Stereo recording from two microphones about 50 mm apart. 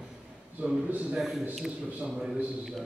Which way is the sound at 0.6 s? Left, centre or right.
Right.